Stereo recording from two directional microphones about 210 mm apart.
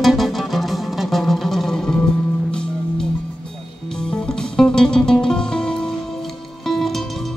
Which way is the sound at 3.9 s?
5° left (ahead or behind).